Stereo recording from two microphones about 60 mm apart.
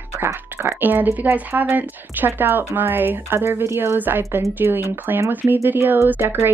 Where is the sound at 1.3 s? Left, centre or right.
Right.